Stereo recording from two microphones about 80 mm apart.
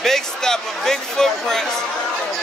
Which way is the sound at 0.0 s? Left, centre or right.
Centre.